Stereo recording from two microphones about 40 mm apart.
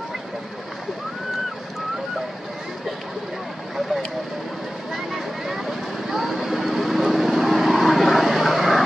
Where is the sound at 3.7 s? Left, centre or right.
Centre.